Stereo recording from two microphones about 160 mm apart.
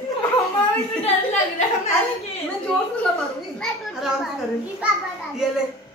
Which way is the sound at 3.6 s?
Centre (ahead or behind).